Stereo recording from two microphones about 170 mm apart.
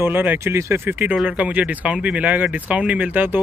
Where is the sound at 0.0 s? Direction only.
10° right (ahead or behind).